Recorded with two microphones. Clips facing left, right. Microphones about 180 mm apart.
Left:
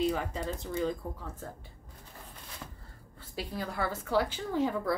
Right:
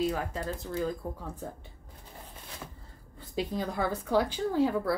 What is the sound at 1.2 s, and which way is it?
Speech, 15° right (ahead or behind).